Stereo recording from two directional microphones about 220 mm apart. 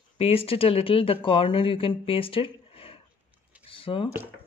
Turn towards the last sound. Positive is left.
turn(degrees=25)  # may be behind; listen again after turning